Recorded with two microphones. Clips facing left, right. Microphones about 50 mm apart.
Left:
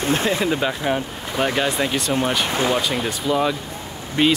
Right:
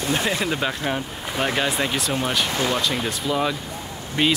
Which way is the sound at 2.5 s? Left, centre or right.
Centre.